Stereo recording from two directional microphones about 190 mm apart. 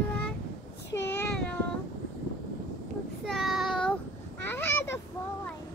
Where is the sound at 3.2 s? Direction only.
Centre (ahead or behind).